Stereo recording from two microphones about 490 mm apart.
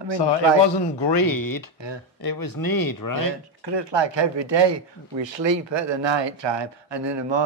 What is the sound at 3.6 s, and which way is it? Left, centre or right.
Speech, right.